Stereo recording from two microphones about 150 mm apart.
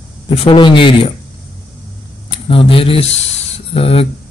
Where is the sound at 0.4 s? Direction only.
35° left (ahead or behind).